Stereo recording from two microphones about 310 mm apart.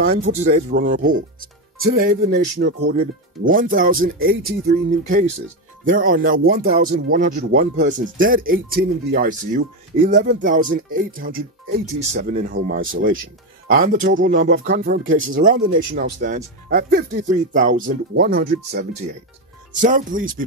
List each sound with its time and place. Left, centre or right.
0.0 s speech: right
0.5 s speech: right